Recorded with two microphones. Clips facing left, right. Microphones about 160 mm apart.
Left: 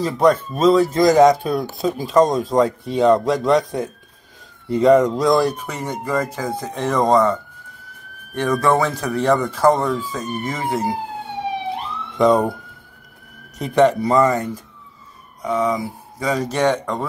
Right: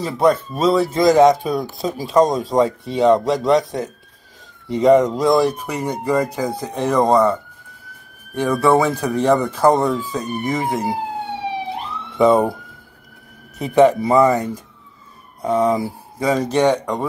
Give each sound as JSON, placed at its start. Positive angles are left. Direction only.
{"t": 0.0, "sound": "speech", "side_deg": -5}
{"t": 8.4, "sound": "speech", "side_deg": -10}
{"t": 12.2, "sound": "speech", "side_deg": -5}
{"t": 13.6, "sound": "speech", "side_deg": -5}
{"t": 15.4, "sound": "speech", "side_deg": -30}
{"t": 16.5, "sound": "speech", "side_deg": -15}